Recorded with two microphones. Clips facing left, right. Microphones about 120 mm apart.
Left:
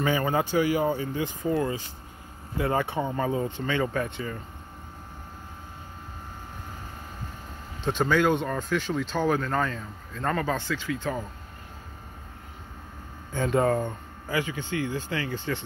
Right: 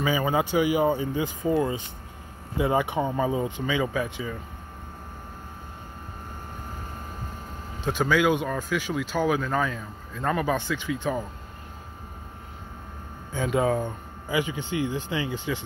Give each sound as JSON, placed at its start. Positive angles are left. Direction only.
{"t": 0.0, "sound": "speech", "side_deg": -10}
{"t": 7.8, "sound": "speech", "side_deg": -5}
{"t": 13.3, "sound": "speech", "side_deg": -5}
{"t": 14.3, "sound": "speech", "side_deg": -20}